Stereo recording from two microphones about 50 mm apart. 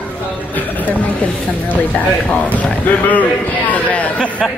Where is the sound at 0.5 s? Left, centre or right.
Left.